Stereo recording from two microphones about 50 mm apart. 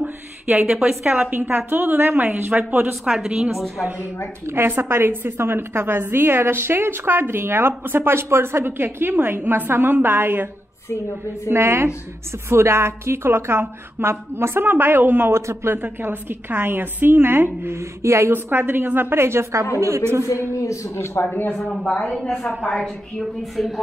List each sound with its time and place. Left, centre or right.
0.7 s a woman's voice: centre
1.3 s a woman's voice: right
2.9 s a woman's voice: centre
3.5 s a woman's voice: centre
4.6 s a woman's voice: right
15.4 s a woman's voice: right
15.8 s a woman's voice: right
17.7 s speech: right
18.3 s a woman's voice: right
20.5 s a man's voice: left
21.6 s a woman's voice: centre
22.7 s a woman's voice: centre
23.6 s a woman's voice: centre